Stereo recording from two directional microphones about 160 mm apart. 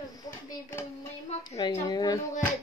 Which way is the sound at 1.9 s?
25° left (ahead or behind).